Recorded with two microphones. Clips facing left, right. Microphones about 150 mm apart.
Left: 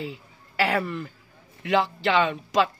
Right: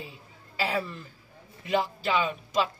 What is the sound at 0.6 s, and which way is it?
A woman's voice, 70° left (ahead or behind).